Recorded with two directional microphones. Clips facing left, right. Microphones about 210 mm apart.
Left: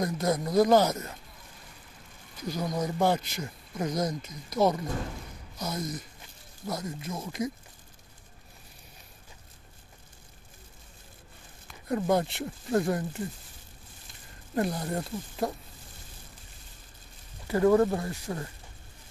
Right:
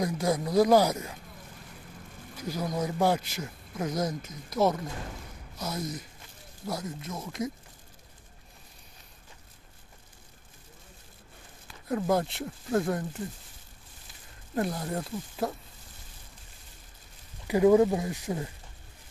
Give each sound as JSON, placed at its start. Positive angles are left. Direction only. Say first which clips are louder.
{"t": 0.0, "sound": "speech", "louder": "even", "side_deg": -5}
{"t": 2.4, "sound": "speech", "louder": "even", "side_deg": -5}
{"t": 11.9, "sound": "speech", "louder": "left 1 dB", "side_deg": 0}
{"t": 14.5, "sound": "speech", "louder": "left 1 dB", "side_deg": 0}
{"t": 17.5, "sound": "speech", "louder": "right 2 dB", "side_deg": -15}